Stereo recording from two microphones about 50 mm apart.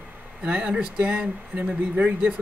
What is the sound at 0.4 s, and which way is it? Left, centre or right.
Speech, right.